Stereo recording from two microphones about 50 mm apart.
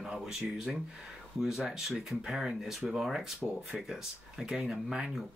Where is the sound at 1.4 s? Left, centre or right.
Centre.